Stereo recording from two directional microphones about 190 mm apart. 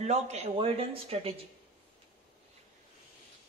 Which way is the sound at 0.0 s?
35° right (ahead or behind).